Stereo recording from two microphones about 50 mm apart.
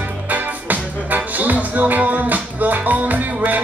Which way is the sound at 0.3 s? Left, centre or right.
Right.